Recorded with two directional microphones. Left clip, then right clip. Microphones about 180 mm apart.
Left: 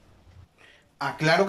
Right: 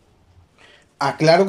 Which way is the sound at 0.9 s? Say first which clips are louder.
Right 8 dB; 25° right (ahead or behind).